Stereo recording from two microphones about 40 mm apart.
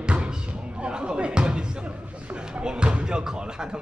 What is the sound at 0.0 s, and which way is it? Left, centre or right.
Music, right.